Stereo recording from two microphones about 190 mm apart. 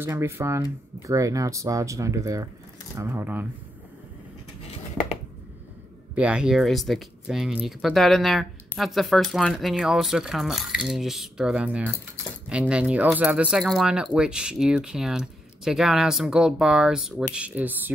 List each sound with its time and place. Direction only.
0.0 s speech: 10° right (ahead or behind)
6.1 s speech: 5° right (ahead or behind)